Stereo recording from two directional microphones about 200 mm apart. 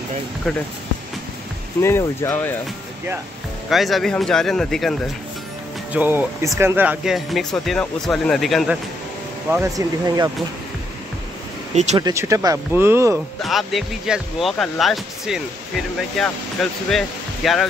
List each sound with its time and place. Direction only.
1.8 s speech: 15° left (ahead or behind)
3.7 s speech: centre (ahead or behind)
5.9 s speech: 10° right (ahead or behind)
9.5 s speech: 15° right (ahead or behind)
11.7 s speech: 35° right (ahead or behind)
12.0 s speech: 15° right (ahead or behind)
13.4 s speech: centre (ahead or behind)
16.6 s speech: centre (ahead or behind)